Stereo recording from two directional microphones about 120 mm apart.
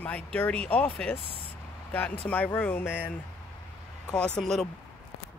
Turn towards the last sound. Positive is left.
turn(degrees=5)  # may be behind; listen again after turning